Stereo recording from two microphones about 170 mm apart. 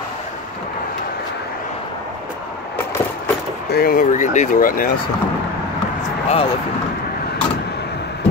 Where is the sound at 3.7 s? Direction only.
65° left (ahead or behind).